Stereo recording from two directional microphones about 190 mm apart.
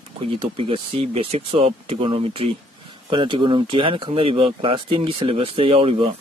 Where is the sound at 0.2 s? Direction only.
30° right (ahead or behind).